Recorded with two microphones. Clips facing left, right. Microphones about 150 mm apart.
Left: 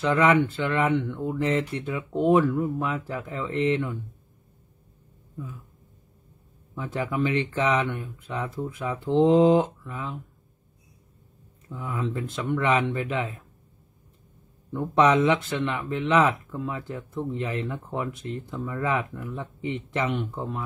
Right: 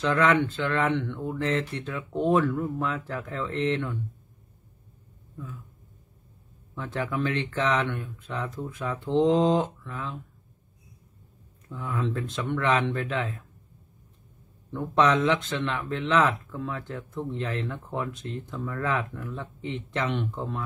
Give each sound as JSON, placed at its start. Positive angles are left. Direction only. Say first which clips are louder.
{"t": 0.0, "sound": "speech", "louder": "left 2 dB", "side_deg": 10}
{"t": 6.7, "sound": "speech", "louder": "left 1 dB", "side_deg": 10}
{"t": 11.7, "sound": "speech", "louder": "even", "side_deg": 5}
{"t": 14.7, "sound": "speech", "louder": "left 2 dB", "side_deg": 10}